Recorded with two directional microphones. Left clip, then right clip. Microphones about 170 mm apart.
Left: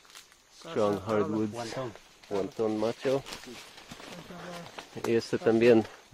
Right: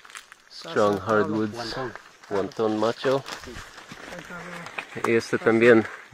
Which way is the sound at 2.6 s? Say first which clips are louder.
Right 6 dB; 15° right (ahead or behind).